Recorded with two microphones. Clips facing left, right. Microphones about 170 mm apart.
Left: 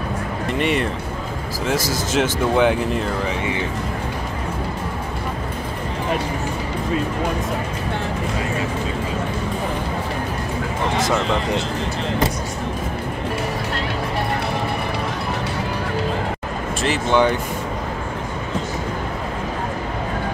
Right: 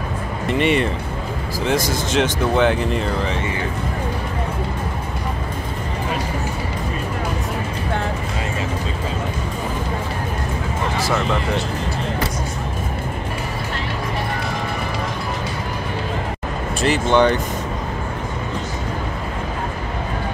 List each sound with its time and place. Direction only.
0.6 s speech: centre (ahead or behind)
16.8 s speech: 5° left (ahead or behind)